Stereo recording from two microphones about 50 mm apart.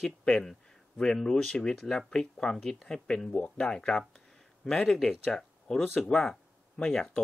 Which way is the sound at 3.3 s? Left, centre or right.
Left.